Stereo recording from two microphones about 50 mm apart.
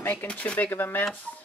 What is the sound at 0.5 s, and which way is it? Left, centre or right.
Speech, left.